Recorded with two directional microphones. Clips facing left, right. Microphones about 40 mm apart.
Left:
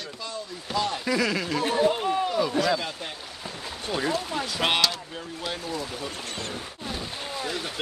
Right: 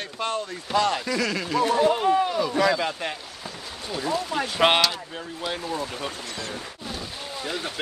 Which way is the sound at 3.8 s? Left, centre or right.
Left.